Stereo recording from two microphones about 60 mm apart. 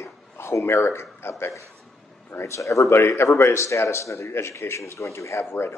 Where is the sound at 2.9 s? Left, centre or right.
Left.